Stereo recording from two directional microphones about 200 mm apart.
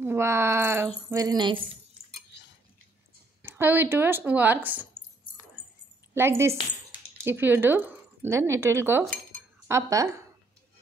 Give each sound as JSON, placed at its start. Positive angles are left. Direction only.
{"t": 0.0, "sound": "a sound", "side_deg": -15}
{"t": 1.1, "sound": "speech", "side_deg": -20}
{"t": 3.4, "sound": "speech", "side_deg": -10}
{"t": 6.1, "sound": "speech", "side_deg": -10}